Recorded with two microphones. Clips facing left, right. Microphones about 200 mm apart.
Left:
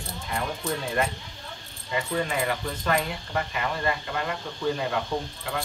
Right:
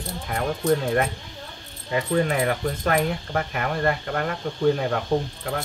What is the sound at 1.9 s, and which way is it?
Speech, 55° right (ahead or behind).